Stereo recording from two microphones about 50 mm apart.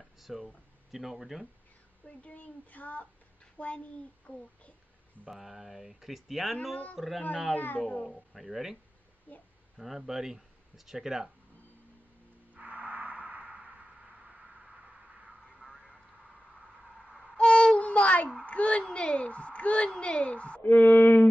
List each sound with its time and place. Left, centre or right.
0.3 s speech: centre
2.0 s a woman's voice: left
5.3 s speech: centre
7.5 s a woman's voice: left
8.3 s speech: centre
9.3 s a woman's voice: left
9.8 s speech: centre
12.5 s a sound: right
14.1 s a sound: centre
15.6 s a sound: centre
17.4 s a sound: centre
18.4 s a woman's voice: left
20.6 s a woman's voice: left